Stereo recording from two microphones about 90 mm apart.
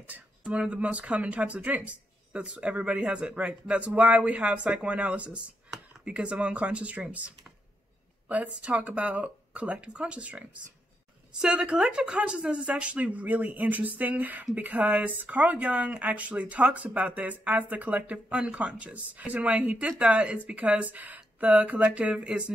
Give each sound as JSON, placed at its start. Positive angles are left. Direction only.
{"t": 0.0, "sound": "speech", "side_deg": -15}